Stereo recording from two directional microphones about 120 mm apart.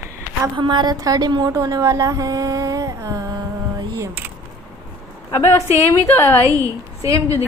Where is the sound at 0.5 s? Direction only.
40° right (ahead or behind).